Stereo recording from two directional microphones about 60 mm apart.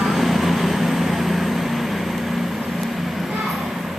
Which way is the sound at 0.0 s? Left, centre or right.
Centre.